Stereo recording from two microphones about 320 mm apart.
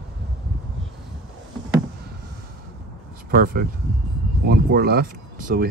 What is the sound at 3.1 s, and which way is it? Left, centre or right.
Speech, right.